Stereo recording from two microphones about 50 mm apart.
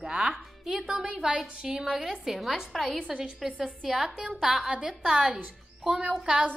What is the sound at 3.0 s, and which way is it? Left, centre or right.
A woman's voice, centre.